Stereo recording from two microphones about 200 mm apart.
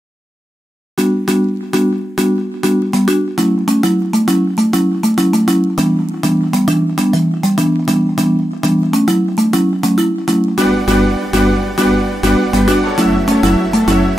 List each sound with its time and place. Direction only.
1.0 s music: centre (ahead or behind)